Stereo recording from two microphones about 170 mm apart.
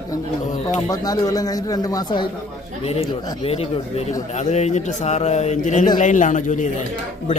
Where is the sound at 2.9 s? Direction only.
35° left (ahead or behind).